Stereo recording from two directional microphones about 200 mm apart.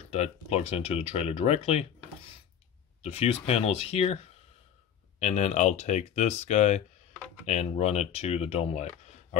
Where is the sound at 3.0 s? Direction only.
30° left (ahead or behind).